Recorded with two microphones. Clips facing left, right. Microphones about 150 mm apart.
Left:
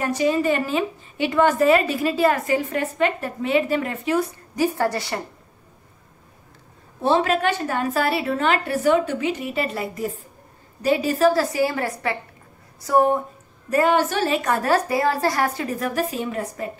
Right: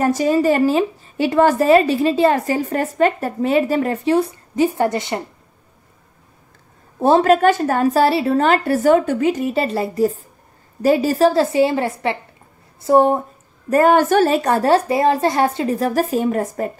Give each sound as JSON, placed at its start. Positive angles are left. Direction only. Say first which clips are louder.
{"t": 0.0, "sound": "a woman's voice", "louder": "right 5 dB", "side_deg": -40}
{"t": 7.0, "sound": "a woman's voice", "louder": "right 7 dB", "side_deg": -45}
{"t": 13.7, "sound": "a woman's voice", "louder": "right 6 dB", "side_deg": -50}
{"t": 14.5, "sound": "a woman's voice", "louder": "right 5 dB", "side_deg": -25}